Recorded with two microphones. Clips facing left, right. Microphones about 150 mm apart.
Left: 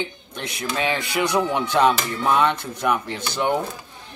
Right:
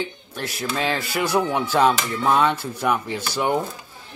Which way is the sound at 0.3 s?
5° right (ahead or behind).